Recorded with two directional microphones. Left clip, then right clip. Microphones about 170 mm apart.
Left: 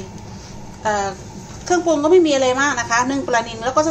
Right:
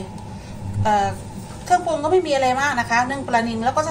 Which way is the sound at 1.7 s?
50° left (ahead or behind).